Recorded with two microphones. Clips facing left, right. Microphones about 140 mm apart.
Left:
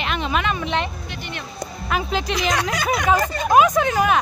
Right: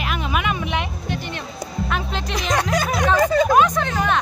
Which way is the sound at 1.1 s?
35° right (ahead or behind).